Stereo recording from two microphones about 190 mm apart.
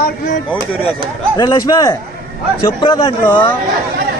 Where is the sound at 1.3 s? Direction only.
20° left (ahead or behind).